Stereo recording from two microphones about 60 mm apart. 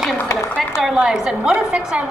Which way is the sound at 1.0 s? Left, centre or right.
Centre.